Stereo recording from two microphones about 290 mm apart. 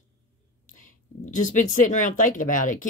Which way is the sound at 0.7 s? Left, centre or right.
Left.